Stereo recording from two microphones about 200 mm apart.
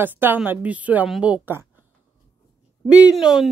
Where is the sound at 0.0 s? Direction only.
10° right (ahead or behind).